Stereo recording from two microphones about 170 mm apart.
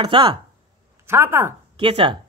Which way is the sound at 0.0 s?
25° right (ahead or behind).